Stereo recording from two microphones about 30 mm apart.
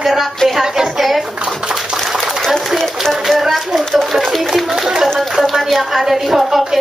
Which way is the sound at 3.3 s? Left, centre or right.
Centre.